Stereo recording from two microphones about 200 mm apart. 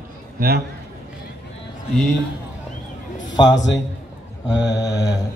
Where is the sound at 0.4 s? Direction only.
45° right (ahead or behind).